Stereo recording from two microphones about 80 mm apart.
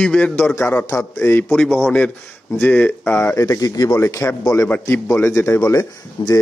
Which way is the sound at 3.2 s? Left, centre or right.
Left.